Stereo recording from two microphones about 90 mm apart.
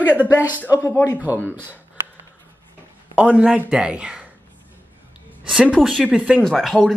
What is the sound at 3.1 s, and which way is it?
A man's voice, 15° right (ahead or behind).